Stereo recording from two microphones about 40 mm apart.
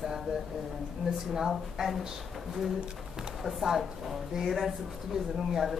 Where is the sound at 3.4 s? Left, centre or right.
Centre.